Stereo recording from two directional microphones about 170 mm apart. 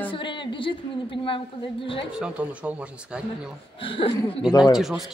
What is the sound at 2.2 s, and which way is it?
Speech, 5° right (ahead or behind).